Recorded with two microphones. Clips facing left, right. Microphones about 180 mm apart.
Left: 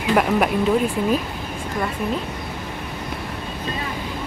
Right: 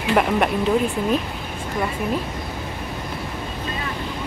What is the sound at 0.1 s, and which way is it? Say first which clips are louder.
Speech: left 1 dB; centre (ahead or behind).